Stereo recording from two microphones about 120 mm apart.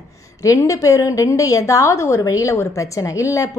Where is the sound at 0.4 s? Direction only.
25° left (ahead or behind).